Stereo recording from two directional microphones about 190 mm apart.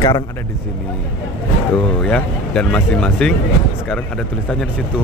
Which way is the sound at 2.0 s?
5° left (ahead or behind).